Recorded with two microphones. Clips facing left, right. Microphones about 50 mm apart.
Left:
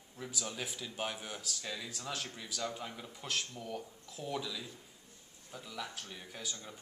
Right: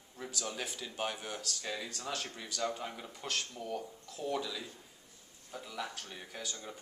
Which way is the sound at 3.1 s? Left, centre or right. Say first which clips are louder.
Left 2 dB; centre.